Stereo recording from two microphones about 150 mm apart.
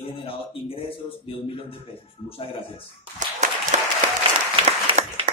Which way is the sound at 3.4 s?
55° right (ahead or behind).